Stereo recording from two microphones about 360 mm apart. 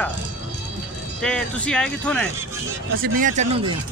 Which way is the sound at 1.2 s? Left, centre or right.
Centre.